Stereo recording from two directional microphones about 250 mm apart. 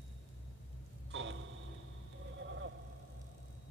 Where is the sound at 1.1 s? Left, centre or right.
Right.